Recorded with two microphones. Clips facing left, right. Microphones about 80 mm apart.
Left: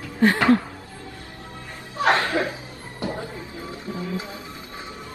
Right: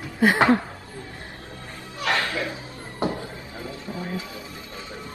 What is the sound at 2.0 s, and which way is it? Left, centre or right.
Music, left.